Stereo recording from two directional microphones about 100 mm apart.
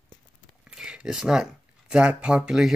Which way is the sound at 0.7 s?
5° right (ahead or behind).